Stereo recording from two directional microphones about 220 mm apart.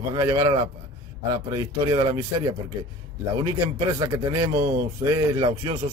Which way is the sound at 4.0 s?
20° right (ahead or behind).